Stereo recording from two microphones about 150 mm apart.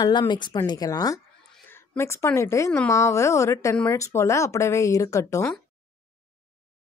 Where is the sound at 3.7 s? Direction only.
10° left (ahead or behind).